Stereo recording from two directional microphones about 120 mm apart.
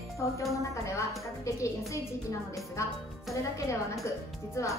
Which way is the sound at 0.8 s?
25° left (ahead or behind).